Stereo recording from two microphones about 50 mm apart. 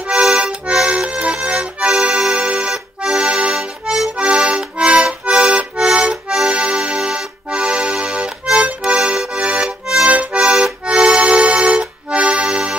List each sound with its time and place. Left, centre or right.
0.0 s accordion: centre
2.3 s music: right
2.7 s accordion: centre
6.5 s music: right
8.5 s accordion: right
10.0 s music: right
10.4 s accordion: centre